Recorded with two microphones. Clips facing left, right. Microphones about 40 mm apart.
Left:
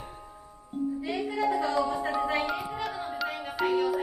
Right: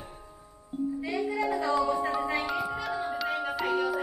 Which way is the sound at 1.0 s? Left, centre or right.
Left.